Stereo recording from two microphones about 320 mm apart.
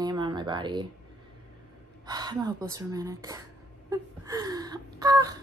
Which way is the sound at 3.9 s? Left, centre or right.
Centre.